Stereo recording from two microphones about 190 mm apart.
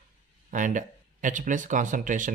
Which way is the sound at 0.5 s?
40° right (ahead or behind).